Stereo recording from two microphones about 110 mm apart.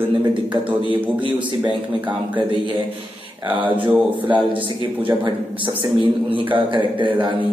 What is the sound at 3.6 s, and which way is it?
Speech, 50° right (ahead or behind).